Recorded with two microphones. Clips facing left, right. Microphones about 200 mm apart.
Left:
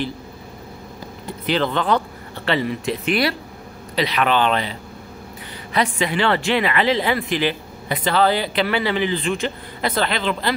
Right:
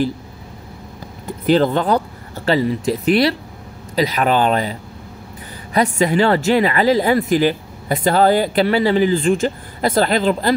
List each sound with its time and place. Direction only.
1.4 s speech: 40° right (ahead or behind)
5.8 s speech: 40° right (ahead or behind)